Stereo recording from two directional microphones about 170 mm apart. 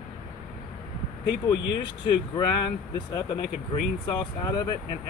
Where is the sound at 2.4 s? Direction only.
25° left (ahead or behind).